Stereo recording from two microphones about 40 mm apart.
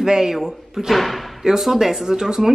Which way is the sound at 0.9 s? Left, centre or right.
Centre.